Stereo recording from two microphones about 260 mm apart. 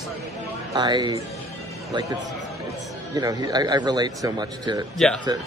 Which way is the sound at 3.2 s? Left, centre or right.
Centre.